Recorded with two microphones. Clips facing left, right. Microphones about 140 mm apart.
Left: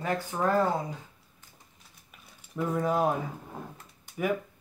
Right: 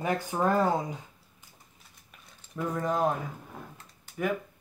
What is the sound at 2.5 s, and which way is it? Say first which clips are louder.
Speech: left 2 dB; 10° left (ahead or behind).